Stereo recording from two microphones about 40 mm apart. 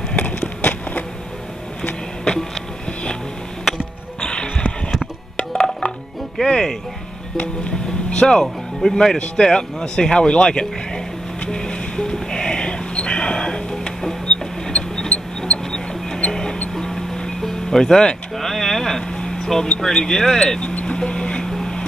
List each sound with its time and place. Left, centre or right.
0.6 s a sound: left
4.2 s music: left
6.4 s speech: left
9.2 s speech: left
11.4 s music: left
14.2 s a sound: left
16.2 s music: centre
18.4 s a sound: centre
19.8 s speech: centre
20.6 s vehicle: left